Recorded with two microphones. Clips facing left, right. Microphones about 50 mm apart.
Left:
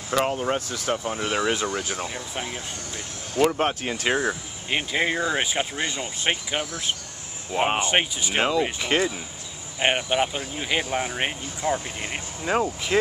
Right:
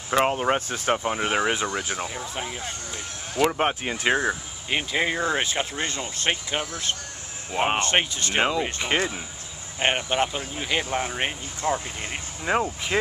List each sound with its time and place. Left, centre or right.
0.1 s speech: right
3.3 s speech: centre
4.6 s speech: centre
8.4 s speech: centre
9.8 s speech: centre
12.5 s speech: centre